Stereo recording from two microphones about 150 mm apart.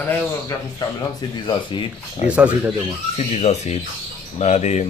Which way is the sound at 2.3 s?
10° right (ahead or behind).